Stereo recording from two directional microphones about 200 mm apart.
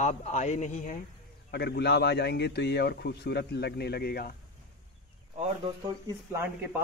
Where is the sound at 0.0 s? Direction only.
35° left (ahead or behind).